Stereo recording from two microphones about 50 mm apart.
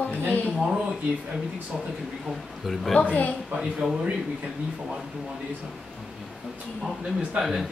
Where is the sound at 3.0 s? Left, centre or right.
Left.